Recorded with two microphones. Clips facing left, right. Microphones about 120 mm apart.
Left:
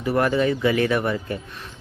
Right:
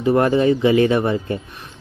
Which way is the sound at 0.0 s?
25° right (ahead or behind).